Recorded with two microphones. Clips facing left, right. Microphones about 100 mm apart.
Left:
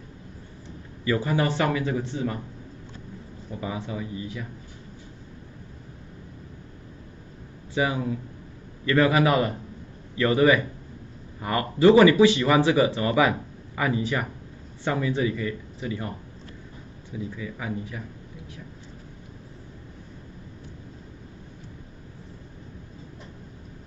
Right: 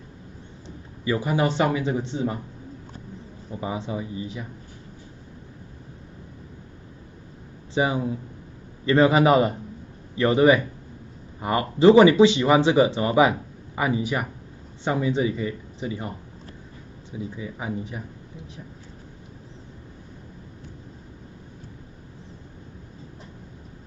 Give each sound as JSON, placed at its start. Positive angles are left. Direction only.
{"t": 1.0, "sound": "speech", "side_deg": -15}
{"t": 3.6, "sound": "speech", "side_deg": -25}
{"t": 7.7, "sound": "speech", "side_deg": -25}
{"t": 17.1, "sound": "speech", "side_deg": -25}